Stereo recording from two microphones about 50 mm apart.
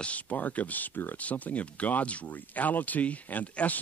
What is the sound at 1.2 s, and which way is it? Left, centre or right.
Speech, left.